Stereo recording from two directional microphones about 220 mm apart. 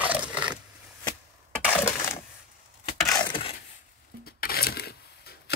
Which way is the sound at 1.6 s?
10° left (ahead or behind).